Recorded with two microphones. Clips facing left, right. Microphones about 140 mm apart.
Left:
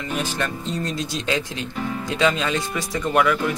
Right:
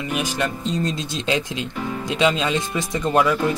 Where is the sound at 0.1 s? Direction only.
15° right (ahead or behind).